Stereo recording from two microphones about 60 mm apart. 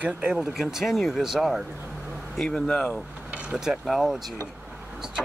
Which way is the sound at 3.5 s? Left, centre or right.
Centre.